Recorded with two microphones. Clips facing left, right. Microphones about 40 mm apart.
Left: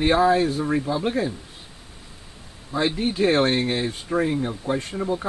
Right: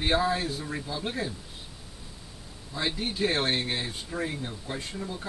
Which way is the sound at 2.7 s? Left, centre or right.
Left.